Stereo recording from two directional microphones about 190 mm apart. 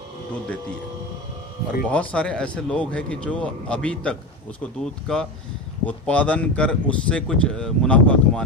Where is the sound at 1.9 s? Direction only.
5° left (ahead or behind).